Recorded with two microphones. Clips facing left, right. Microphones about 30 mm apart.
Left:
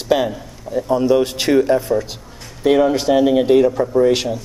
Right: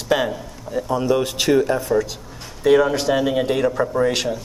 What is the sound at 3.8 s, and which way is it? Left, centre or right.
Speech, right.